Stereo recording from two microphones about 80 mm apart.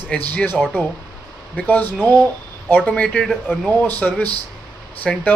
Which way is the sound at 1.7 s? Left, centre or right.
Centre.